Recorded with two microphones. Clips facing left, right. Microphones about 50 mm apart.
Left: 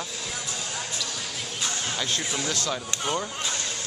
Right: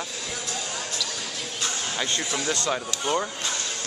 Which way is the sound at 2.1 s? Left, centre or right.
Centre.